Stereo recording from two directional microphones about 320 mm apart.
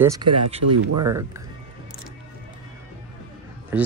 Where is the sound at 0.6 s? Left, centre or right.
Right.